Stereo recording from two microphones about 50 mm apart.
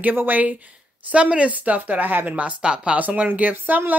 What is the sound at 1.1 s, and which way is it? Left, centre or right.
A woman's voice, right.